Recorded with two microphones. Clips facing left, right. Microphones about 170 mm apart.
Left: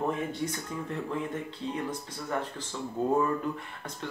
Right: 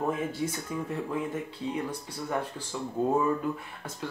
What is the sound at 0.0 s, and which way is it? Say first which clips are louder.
Speech: right 1 dB; 5° right (ahead or behind).